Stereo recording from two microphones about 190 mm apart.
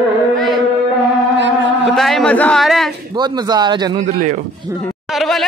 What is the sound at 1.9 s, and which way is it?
A man's voice, centre (ahead or behind).